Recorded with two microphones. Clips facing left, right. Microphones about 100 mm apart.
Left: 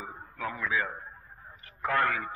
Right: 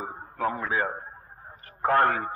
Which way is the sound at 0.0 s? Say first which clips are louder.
Right 7 dB; 40° right (ahead or behind).